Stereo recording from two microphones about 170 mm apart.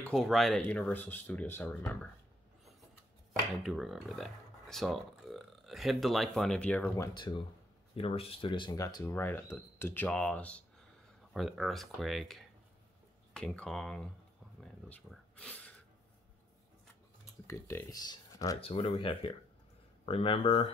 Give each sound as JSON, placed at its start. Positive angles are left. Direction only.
{"t": 0.0, "sound": "speech", "side_deg": 0}
{"t": 3.6, "sound": "speech", "side_deg": 0}
{"t": 7.2, "sound": "speech", "side_deg": 25}
{"t": 14.6, "sound": "a sound", "side_deg": 5}
{"t": 17.5, "sound": "speech", "side_deg": 15}
{"t": 18.6, "sound": "speech", "side_deg": 35}